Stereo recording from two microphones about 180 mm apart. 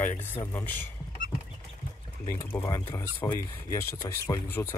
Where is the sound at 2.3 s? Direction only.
15° left (ahead or behind).